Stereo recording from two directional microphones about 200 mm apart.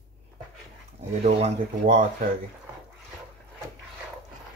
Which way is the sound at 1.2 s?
35° right (ahead or behind).